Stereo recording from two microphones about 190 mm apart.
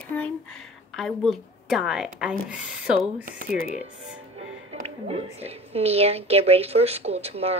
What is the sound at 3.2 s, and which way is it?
Speech, 45° right (ahead or behind).